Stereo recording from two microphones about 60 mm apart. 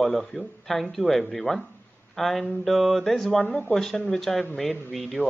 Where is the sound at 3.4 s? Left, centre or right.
Left.